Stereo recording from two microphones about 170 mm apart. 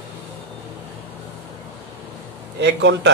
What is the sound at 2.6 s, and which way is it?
Speech, 90° right.